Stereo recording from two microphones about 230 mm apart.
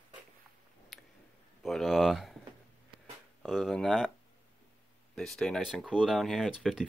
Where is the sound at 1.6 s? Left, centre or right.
Centre.